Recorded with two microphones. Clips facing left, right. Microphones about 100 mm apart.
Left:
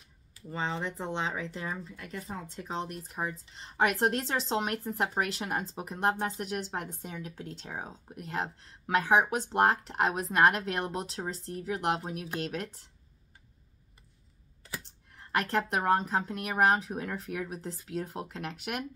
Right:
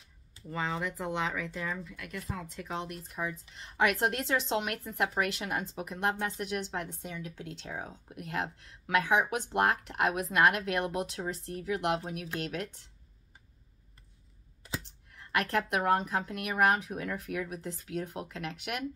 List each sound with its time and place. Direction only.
0.5 s a woman's voice: 25° left (ahead or behind)
15.1 s a woman's voice: 35° left (ahead or behind)